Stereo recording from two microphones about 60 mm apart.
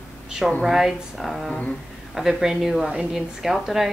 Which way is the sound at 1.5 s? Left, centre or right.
Centre.